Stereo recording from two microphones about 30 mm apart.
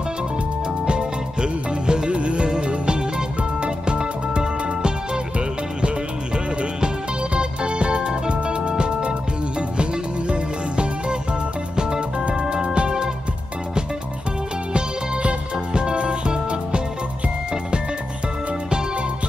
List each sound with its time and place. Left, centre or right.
0.8 s music: right
6.3 s music: right
15.5 s music: right